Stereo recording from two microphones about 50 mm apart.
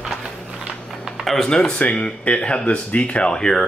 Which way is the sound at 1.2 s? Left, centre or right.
Centre.